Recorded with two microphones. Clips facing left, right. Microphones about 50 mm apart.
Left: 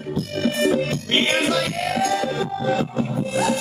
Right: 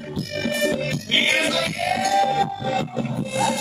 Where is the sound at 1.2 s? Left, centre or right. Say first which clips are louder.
Right 1 dB; right.